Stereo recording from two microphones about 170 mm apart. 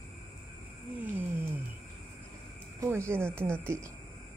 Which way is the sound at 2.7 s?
15° right (ahead or behind).